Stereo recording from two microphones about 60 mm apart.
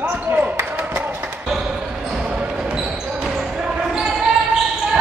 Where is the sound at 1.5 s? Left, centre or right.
Centre.